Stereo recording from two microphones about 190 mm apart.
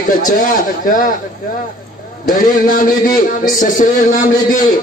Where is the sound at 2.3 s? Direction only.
45° left (ahead or behind).